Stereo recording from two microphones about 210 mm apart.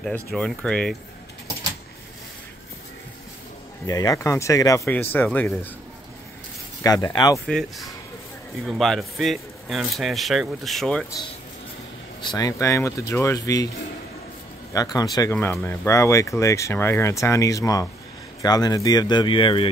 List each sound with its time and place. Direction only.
0.0 s speech: 5° left (ahead or behind)
3.8 s speech: 15° left (ahead or behind)
6.8 s speech: 15° left (ahead or behind)
7.4 s speech: centre (ahead or behind)
12.2 s speech: 20° left (ahead or behind)
14.7 s speech: 15° left (ahead or behind)